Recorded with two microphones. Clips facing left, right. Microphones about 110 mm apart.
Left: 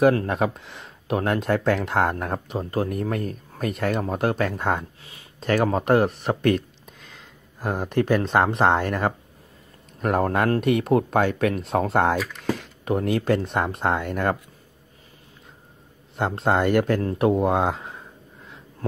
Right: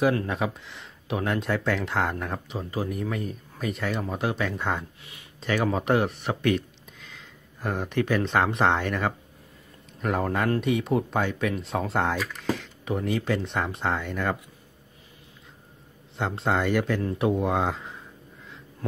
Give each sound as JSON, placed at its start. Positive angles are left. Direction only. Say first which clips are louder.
{"t": 0.3, "sound": "speech", "louder": "left 5 dB", "side_deg": 50}
{"t": 1.1, "sound": "speech", "louder": "left 4 dB", "side_deg": 60}
{"t": 10.0, "sound": "speech", "louder": "left 4 dB", "side_deg": 50}
{"t": 16.2, "sound": "speech", "louder": "left 4 dB", "side_deg": 50}